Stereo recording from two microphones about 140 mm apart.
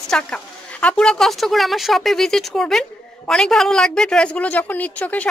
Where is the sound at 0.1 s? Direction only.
10° left (ahead or behind).